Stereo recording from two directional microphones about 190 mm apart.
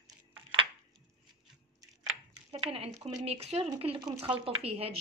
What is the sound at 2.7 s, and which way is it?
Speech, 30° right (ahead or behind).